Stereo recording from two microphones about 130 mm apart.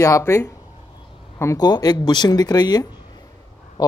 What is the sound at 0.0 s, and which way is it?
A man's voice, 25° left (ahead or behind).